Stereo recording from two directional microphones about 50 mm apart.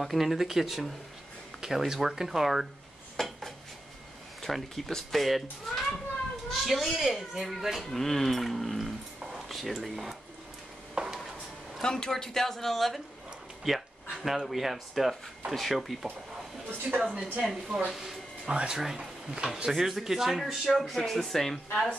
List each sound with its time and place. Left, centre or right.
0.0 s speech: centre
3.2 s dishes: centre
4.4 s speech: centre
11.0 s a sound: centre
11.8 s speech: centre
17.0 s speech: centre
17.9 s a sound: centre
18.5 s speech: centre
19.4 s speech: centre